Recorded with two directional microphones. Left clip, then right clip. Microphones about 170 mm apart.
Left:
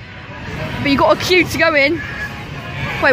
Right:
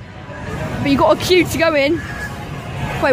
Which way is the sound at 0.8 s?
10° right (ahead or behind).